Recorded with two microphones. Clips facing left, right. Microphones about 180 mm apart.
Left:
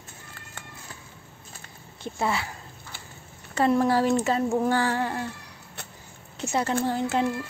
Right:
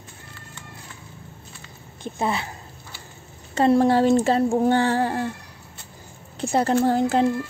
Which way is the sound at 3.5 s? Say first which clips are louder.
Right 4 dB; 30° right (ahead or behind).